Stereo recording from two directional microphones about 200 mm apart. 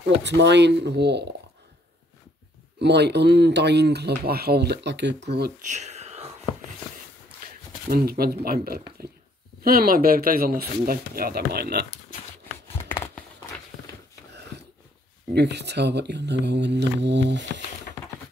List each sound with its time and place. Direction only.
0.0 s speech: 60° right (ahead or behind)
2.8 s speech: 55° right (ahead or behind)
5.6 s whispering: 35° right (ahead or behind)
7.9 s speech: 50° right (ahead or behind)
15.3 s speech: 60° right (ahead or behind)